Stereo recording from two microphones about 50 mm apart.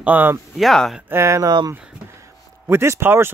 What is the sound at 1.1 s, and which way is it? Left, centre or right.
Speech, right.